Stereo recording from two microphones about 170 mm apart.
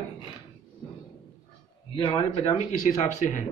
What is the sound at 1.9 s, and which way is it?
Speech, 35° left (ahead or behind).